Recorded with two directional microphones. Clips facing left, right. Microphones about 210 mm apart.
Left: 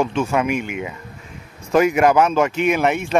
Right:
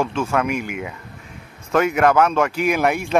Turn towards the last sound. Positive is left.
turn(degrees=0)  # may be behind; listen again after turning